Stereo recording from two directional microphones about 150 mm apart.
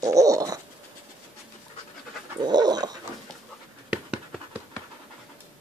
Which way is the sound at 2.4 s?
25° right (ahead or behind).